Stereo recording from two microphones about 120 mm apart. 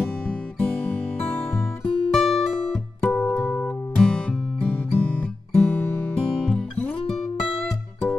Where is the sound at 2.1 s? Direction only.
Centre (ahead or behind).